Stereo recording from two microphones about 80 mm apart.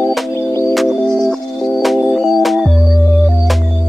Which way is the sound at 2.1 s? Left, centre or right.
Centre.